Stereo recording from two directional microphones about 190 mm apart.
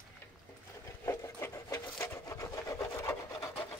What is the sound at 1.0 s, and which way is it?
Rub, 15° left (ahead or behind).